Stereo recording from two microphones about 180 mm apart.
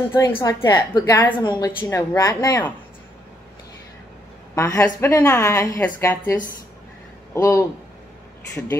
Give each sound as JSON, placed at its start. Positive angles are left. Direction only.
{"t": 0.4, "sound": "a woman's voice", "side_deg": 20}
{"t": 4.6, "sound": "a woman's voice", "side_deg": 15}
{"t": 7.3, "sound": "a woman's voice", "side_deg": 15}